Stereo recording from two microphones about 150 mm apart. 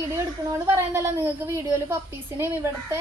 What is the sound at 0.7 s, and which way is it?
Speech, 15° right (ahead or behind).